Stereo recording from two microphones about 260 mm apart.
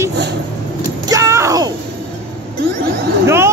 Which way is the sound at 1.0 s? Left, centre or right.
Centre.